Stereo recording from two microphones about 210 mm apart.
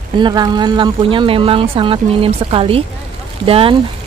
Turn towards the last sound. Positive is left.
turn(degrees=-25)  # may be behind; listen again after turning